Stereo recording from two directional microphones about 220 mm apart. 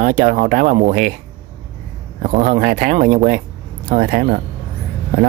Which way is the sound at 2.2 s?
35° right (ahead or behind).